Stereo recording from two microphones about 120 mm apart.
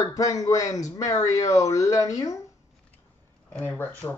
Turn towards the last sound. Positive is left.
turn(degrees=15)  # may be behind; listen again after turning